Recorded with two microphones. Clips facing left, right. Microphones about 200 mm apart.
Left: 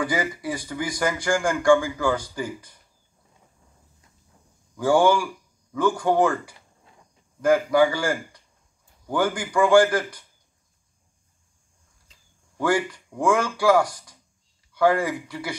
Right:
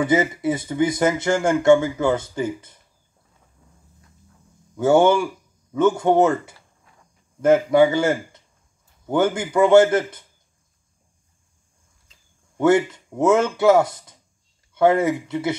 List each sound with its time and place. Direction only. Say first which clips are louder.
0.0 s speech: right 7 dB; 25° right (ahead or behind)
4.7 s speech: right 3 dB; 25° right (ahead or behind)
12.5 s speech: right 6 dB; 20° right (ahead or behind)